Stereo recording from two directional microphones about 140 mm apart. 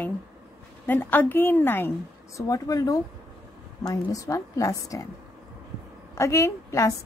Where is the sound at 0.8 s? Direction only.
15° left (ahead or behind).